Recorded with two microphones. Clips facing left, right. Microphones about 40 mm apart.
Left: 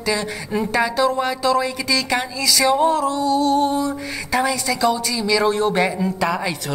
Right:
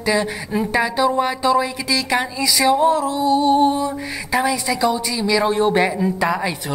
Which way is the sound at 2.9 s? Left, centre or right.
Centre.